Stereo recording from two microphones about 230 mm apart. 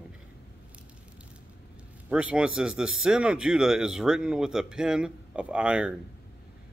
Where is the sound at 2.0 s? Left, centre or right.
Centre.